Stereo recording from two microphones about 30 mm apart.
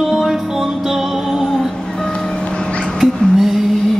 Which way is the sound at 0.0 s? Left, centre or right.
Centre.